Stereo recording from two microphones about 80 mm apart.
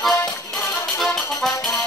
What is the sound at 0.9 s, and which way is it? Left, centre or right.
Music, centre.